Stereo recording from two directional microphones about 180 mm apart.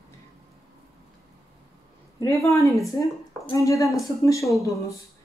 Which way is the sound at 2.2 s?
15° left (ahead or behind).